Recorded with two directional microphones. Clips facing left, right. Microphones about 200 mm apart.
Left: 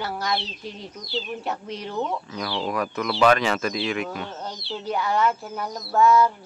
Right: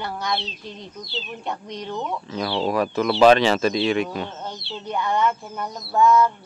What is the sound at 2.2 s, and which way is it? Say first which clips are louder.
Speech: right 4 dB; 25° right (ahead or behind).